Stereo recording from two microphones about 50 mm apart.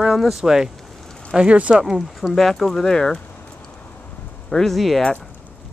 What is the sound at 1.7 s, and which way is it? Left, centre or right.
Speech, centre.